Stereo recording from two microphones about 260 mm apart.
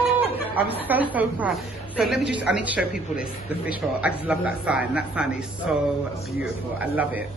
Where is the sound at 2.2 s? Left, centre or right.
Right.